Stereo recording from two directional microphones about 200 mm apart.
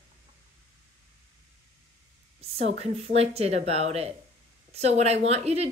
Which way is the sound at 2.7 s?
30° right (ahead or behind).